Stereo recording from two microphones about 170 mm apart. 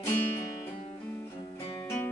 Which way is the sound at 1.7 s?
15° left (ahead or behind).